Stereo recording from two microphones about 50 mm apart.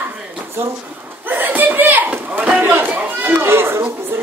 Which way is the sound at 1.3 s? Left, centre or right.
Right.